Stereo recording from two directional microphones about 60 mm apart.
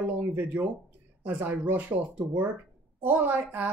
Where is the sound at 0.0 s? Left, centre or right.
Right.